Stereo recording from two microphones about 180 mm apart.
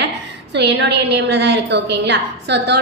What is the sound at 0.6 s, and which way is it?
A woman's voice, 70° right (ahead or behind).